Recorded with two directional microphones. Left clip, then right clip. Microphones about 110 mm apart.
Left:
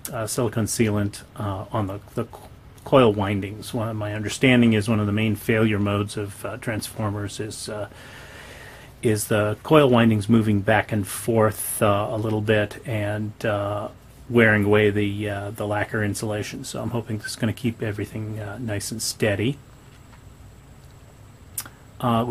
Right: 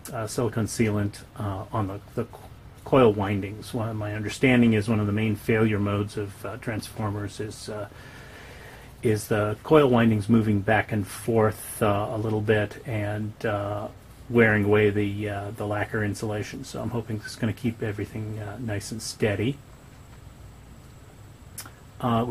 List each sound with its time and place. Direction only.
0.0 s speech: 25° left (ahead or behind)
9.0 s speech: 30° left (ahead or behind)
21.5 s tick: 30° left (ahead or behind)